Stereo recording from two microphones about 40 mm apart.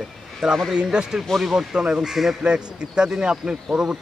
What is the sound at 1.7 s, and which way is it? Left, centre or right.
Speech, right.